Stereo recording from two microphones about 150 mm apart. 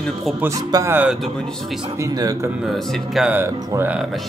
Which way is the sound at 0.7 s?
25° right (ahead or behind).